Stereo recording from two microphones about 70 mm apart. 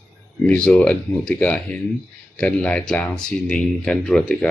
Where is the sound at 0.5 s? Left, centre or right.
Centre.